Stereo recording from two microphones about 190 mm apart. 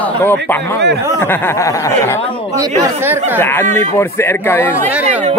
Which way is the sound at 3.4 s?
10° left (ahead or behind).